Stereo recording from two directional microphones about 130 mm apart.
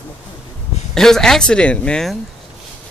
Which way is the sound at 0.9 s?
5° left (ahead or behind).